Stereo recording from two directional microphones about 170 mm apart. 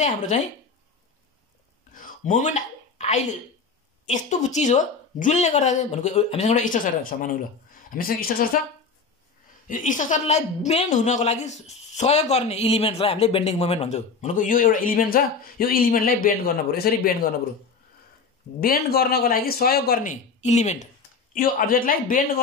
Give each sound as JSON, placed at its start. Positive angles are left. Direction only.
{"t": 0.3, "sound": "speech", "side_deg": 40}
{"t": 2.0, "sound": "a sound", "side_deg": 50}
{"t": 4.1, "sound": "a woman's voice", "side_deg": 45}
{"t": 9.7, "sound": "a woman's voice", "side_deg": 50}
{"t": 18.6, "sound": "speech", "side_deg": 65}